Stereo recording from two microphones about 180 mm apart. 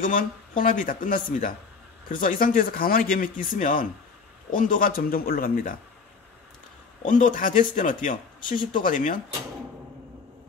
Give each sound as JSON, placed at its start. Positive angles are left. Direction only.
{"t": 0.0, "sound": "speech", "side_deg": 50}
{"t": 7.1, "sound": "speech", "side_deg": 45}